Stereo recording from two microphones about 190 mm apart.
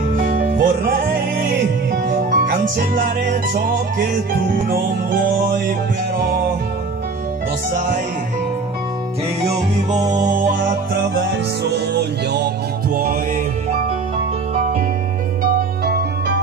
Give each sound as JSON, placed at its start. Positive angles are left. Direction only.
{"t": 0.1, "sound": "music", "side_deg": -45}
{"t": 9.8, "sound": "music", "side_deg": -40}
{"t": 11.1, "sound": "music", "side_deg": -60}
{"t": 12.9, "sound": "music", "side_deg": -50}
{"t": 15.8, "sound": "music", "side_deg": -55}